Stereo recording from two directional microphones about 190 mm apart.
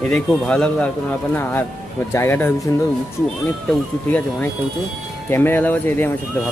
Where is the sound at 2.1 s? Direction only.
10° left (ahead or behind).